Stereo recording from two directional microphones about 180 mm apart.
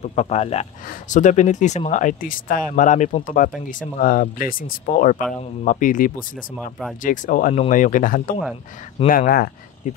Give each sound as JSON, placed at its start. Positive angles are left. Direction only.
{"t": 0.0, "sound": "speech", "side_deg": 35}
{"t": 9.8, "sound": "speech", "side_deg": 45}